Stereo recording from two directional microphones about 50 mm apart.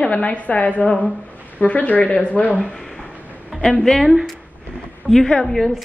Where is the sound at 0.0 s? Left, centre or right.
Left.